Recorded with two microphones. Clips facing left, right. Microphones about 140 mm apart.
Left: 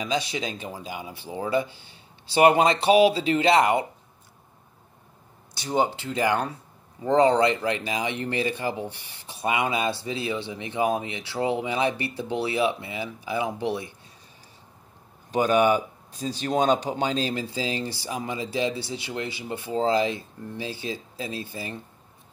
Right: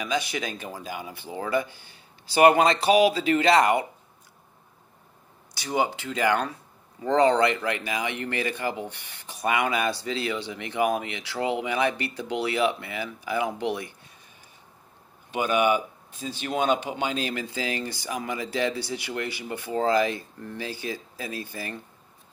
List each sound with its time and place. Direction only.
0.0 s speech: 25° left (ahead or behind)
5.9 s speech: 25° left (ahead or behind)
15.3 s speech: 35° left (ahead or behind)